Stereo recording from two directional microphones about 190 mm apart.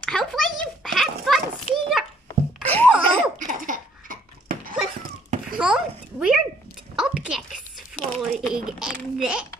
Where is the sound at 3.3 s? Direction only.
45° right (ahead or behind).